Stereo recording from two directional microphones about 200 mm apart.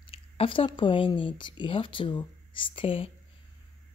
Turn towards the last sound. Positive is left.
turn(degrees=25)  # may be behind; listen again after turning